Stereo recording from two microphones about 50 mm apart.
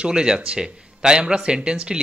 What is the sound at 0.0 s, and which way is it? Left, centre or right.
Speech, centre.